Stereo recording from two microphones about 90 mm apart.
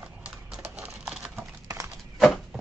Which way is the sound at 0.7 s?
10° right (ahead or behind).